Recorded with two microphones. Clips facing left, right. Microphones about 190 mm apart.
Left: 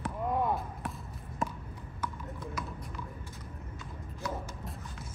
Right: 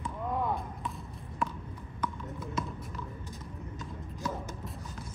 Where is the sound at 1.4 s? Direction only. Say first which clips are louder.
Right 1 dB; 45° left (ahead or behind).